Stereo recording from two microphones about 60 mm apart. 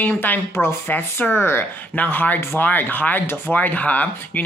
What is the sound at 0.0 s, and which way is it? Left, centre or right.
Speech, left.